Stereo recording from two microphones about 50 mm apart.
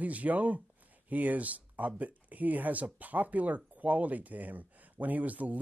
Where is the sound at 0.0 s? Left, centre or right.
Right.